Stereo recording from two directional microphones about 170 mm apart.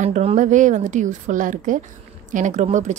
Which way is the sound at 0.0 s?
40° right (ahead or behind).